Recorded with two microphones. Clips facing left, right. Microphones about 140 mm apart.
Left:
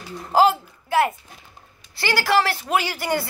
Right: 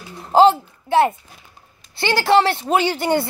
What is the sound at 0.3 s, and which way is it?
A child's voice, 25° right (ahead or behind).